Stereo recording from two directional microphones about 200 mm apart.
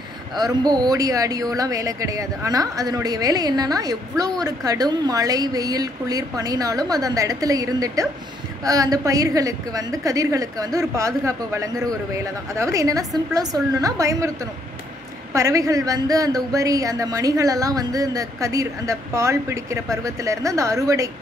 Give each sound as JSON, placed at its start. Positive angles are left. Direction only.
{"t": 0.4, "sound": "speech", "side_deg": -20}